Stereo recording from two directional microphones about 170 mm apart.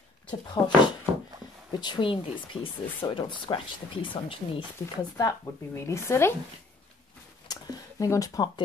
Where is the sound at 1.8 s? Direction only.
25° left (ahead or behind).